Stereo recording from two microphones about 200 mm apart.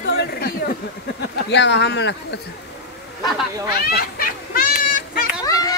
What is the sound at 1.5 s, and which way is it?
Speech, 60° left (ahead or behind).